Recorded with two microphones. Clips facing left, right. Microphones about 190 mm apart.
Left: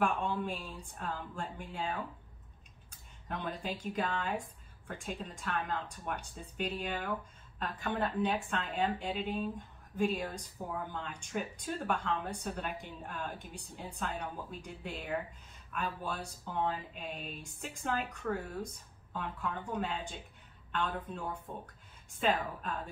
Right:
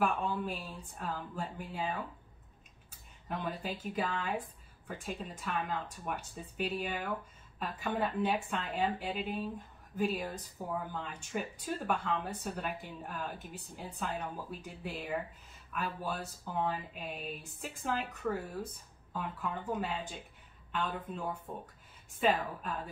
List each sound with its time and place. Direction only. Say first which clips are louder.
0.0 s speech: even; 5° right (ahead or behind)